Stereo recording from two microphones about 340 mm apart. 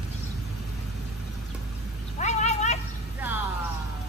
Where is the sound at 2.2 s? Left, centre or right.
Centre.